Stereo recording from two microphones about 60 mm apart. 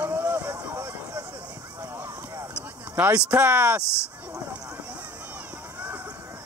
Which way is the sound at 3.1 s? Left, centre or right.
Right.